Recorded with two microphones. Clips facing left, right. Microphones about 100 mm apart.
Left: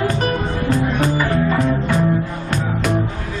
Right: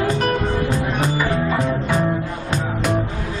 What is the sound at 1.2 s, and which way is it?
Music, 5° right (ahead or behind).